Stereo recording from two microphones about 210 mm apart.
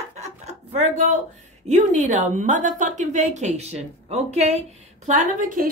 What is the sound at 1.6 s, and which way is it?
A woman's voice, 35° right (ahead or behind).